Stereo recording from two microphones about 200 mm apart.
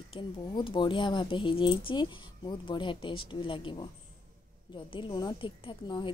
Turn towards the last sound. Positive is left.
turn(degrees=25)  # may be behind; listen again after turning